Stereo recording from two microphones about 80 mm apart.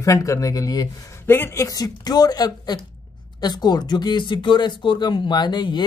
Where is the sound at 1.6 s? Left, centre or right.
Left.